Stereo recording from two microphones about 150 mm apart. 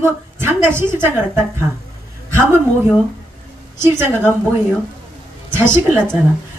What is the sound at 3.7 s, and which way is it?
Speech, 15° right (ahead or behind).